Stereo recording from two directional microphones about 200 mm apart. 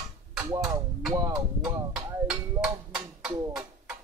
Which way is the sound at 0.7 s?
20° right (ahead or behind).